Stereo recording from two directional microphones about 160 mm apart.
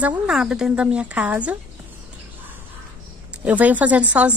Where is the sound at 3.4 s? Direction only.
10° right (ahead or behind).